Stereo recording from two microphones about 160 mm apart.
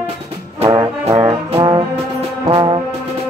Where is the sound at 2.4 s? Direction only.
30° right (ahead or behind).